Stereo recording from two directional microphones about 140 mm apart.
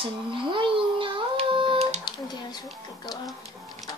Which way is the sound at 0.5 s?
35° right (ahead or behind).